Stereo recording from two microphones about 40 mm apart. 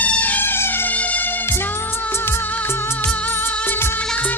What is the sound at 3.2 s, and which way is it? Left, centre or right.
Music, left.